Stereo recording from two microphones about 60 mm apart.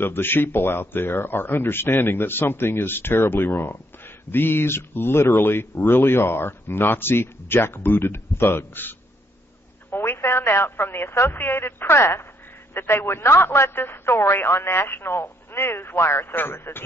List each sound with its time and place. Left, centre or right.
0.0 s speech: left